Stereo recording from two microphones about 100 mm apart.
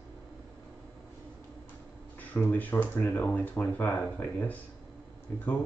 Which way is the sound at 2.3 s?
15° left (ahead or behind).